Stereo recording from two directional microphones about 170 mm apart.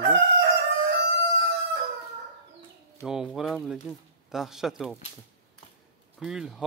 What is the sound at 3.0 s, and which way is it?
Speech, 5° right (ahead or behind).